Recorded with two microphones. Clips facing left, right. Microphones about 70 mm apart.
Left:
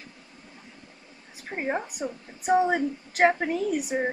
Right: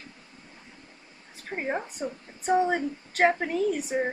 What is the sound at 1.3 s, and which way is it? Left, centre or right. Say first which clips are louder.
A woman's voice: left 1 dB; centre.